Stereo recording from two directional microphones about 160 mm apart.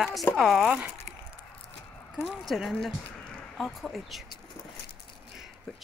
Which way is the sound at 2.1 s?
Centre (ahead or behind).